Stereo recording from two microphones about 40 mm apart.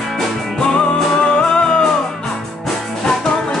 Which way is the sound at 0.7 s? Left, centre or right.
Left.